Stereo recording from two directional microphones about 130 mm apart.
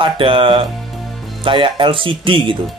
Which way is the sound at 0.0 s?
40° right (ahead or behind).